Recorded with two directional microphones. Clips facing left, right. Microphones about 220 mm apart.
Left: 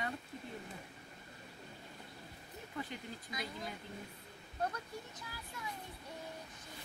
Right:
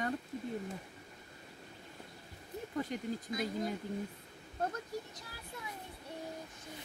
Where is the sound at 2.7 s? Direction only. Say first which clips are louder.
Right 7 dB; 45° right (ahead or behind).